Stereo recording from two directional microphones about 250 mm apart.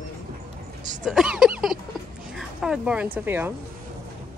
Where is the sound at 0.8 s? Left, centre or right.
Right.